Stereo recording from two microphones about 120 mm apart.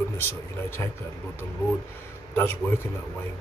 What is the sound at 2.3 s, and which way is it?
Speech, 20° left (ahead or behind).